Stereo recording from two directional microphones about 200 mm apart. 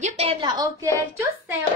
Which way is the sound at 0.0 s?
35° right (ahead or behind).